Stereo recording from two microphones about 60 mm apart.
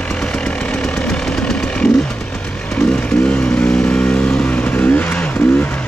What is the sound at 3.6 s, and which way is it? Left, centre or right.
Vehicle, left.